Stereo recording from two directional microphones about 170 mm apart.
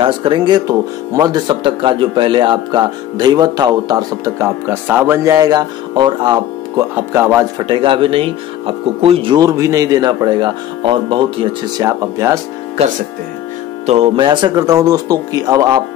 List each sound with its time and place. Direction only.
0.0 s speech: 30° right (ahead or behind)
7.0 s speech: 15° right (ahead or behind)
7.6 s speech: 30° right (ahead or behind)
11.8 s speech: 15° right (ahead or behind)
13.8 s speech: 35° right (ahead or behind)